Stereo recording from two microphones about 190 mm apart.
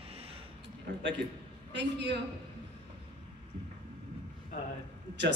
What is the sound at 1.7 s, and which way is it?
Speech, 65° right (ahead or behind).